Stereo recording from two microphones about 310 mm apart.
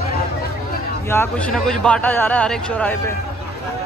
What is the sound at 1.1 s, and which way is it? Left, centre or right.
Speech, centre.